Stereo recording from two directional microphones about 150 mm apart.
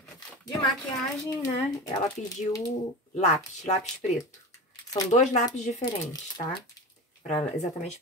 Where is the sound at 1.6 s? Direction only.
25° left (ahead or behind).